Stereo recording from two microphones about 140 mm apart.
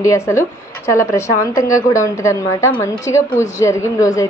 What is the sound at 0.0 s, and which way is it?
A woman's voice, 20° left (ahead or behind).